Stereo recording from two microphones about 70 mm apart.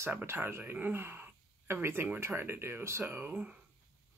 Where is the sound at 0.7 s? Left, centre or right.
Right.